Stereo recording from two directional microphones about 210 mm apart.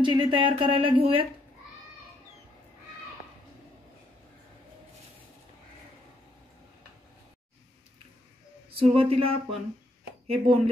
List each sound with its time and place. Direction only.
0.0 s speech: 20° right (ahead or behind)
8.7 s speech: 25° right (ahead or behind)